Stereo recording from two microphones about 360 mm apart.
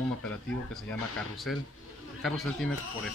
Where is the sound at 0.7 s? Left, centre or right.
Centre.